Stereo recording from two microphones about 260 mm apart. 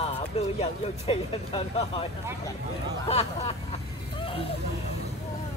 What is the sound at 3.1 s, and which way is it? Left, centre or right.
Speech, left.